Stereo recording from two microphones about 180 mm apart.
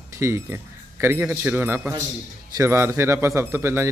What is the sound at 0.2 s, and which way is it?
A man's voice, 15° right (ahead or behind).